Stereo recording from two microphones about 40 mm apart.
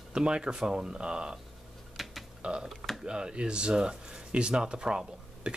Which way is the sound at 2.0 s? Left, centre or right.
Centre.